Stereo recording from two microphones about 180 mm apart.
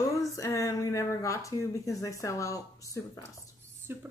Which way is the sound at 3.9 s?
10° right (ahead or behind).